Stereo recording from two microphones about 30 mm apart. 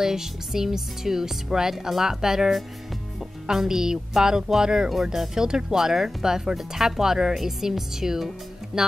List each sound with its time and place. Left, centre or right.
0.0 s speech: centre